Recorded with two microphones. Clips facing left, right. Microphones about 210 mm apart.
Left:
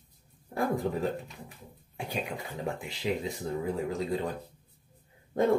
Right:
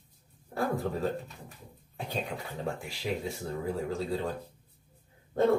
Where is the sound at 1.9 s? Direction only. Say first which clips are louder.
Even; 10° left (ahead or behind).